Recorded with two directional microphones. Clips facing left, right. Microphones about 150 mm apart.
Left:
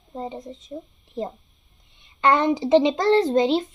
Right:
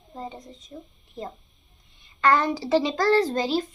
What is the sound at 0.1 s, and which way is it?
A woman's voice, 25° left (ahead or behind).